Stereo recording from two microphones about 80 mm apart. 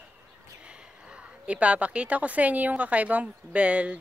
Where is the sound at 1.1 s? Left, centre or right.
Centre.